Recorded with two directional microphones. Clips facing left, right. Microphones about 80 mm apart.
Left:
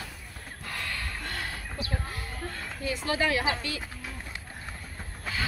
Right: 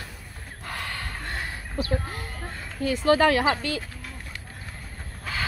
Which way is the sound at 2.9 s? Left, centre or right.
Right.